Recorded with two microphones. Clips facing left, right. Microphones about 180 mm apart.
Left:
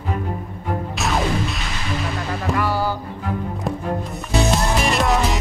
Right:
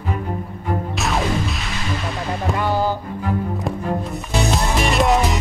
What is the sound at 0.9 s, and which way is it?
Music, centre (ahead or behind).